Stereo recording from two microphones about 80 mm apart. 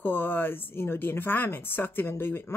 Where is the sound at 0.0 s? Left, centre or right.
Left.